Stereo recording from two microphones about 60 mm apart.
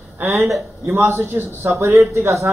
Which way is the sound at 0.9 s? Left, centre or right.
Right.